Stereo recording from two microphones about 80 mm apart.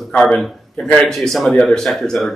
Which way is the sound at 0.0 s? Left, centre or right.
Centre.